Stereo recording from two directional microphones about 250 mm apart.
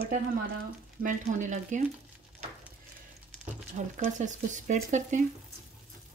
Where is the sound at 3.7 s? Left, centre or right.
Right.